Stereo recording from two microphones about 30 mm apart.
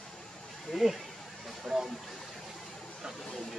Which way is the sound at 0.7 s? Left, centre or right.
Centre.